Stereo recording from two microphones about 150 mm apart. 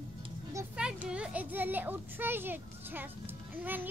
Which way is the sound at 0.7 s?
5° right (ahead or behind).